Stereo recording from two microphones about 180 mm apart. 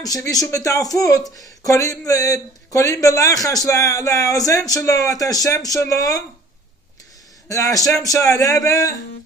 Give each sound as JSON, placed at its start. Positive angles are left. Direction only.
{"t": 0.0, "sound": "speech", "side_deg": 20}
{"t": 7.4, "sound": "speech", "side_deg": 20}